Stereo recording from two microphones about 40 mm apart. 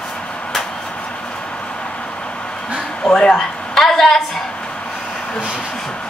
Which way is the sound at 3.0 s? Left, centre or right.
Centre.